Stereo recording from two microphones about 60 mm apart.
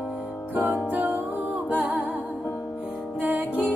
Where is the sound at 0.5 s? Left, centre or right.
Right.